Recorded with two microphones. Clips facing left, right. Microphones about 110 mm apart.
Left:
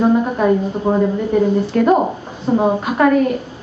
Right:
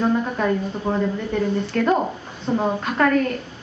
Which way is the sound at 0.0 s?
20° left (ahead or behind).